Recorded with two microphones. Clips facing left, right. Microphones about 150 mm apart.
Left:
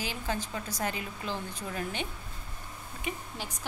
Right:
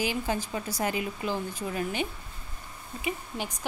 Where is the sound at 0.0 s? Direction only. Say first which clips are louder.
Right 5 dB; 10° right (ahead or behind).